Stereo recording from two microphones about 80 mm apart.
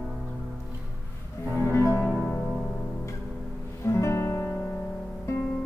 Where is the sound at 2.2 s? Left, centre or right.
Centre.